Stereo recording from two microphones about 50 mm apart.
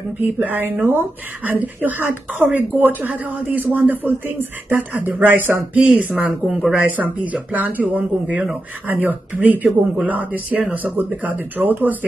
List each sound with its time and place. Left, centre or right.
0.2 s speech: right
5.8 s speech: right
8.8 s speech: right